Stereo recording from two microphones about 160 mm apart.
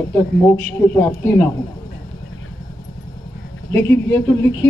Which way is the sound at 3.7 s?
10° left (ahead or behind).